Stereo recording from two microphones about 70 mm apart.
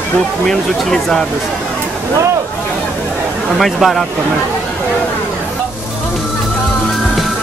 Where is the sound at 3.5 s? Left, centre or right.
Centre.